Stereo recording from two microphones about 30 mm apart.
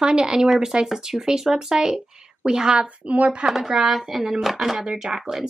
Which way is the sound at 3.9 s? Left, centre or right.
Centre.